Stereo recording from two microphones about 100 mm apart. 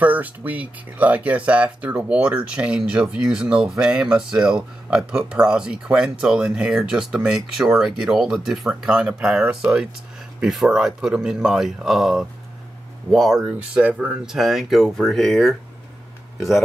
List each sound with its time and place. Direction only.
0.0 s speech: 15° right (ahead or behind); by 16.6 s centre (ahead or behind)